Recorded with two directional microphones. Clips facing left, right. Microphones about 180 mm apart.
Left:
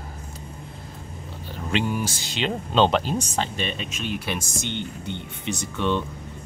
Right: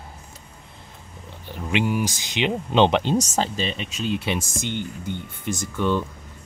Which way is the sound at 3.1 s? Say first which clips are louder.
Right 4 dB; 40° right (ahead or behind).